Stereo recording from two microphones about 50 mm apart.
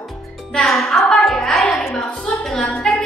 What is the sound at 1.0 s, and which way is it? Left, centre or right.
Music, centre.